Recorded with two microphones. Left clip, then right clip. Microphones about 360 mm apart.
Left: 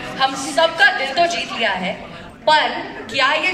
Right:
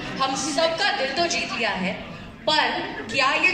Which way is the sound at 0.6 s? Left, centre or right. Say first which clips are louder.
Left 8 dB; left.